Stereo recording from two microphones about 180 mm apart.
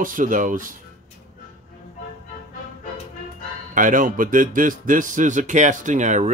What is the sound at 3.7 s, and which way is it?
Speech, 50° right (ahead or behind).